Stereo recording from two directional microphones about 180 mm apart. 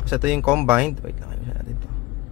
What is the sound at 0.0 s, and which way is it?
Speech, 5° right (ahead or behind).